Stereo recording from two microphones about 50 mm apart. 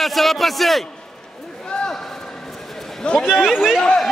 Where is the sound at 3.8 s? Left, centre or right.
Centre.